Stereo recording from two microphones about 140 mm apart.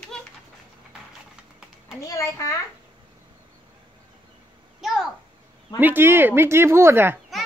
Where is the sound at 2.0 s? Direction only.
20° left (ahead or behind).